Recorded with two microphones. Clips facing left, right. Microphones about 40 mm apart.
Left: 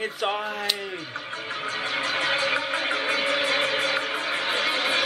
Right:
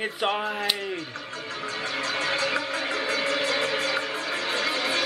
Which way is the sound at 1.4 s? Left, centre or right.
Left.